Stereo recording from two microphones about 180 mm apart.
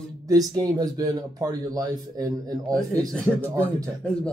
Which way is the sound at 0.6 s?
20° right (ahead or behind).